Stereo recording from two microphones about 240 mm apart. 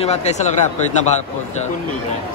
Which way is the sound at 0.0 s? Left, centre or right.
Left.